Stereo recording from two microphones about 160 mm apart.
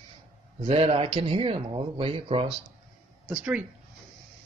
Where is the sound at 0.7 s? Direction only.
40° right (ahead or behind).